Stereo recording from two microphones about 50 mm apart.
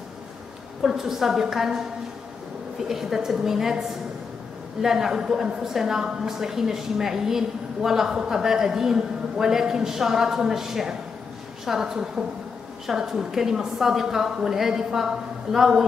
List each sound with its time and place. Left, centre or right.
0.8 s a woman's voice: centre
2.9 s a woman's voice: centre
4.8 s a woman's voice: centre